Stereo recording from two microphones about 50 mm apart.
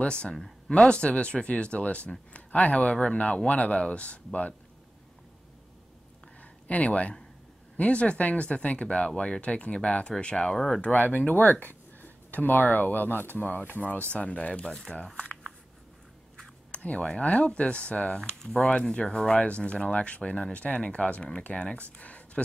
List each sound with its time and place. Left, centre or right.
0.0 s speech: centre
6.4 s speech: left; by 10.8 s centre
10.8 s speech: left
14.9 s speech: centre
16.3 s speech: left
21.9 s a sound: left